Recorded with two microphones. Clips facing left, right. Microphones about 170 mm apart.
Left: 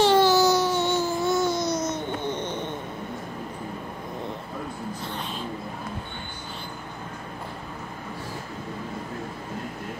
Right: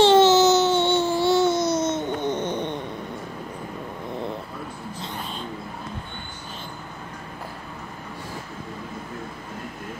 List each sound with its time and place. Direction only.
0.0 s baby cry: 25° right (ahead or behind)